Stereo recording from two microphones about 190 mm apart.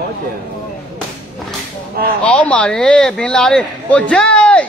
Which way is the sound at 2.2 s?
5° left (ahead or behind).